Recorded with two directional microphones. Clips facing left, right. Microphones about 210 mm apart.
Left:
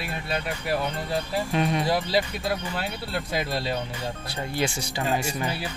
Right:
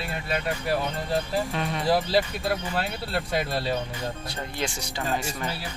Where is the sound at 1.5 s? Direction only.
15° left (ahead or behind).